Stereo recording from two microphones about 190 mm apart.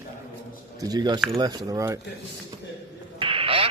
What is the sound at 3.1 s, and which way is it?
Radio, 30° right (ahead or behind).